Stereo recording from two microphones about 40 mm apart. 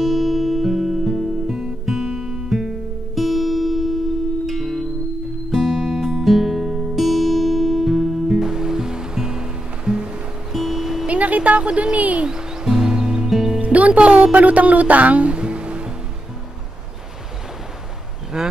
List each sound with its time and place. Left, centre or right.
0.0 s music: centre
7.0 s music: centre; by 10.2 s right
10.5 s music: centre
11.1 s vehicle: right
11.6 s a sound: right
12.3 s music: centre
13.3 s music: centre
13.6 s music: right
18.3 s a sound: centre